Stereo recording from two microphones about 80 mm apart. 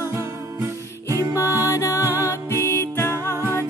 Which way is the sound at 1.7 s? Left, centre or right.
Left.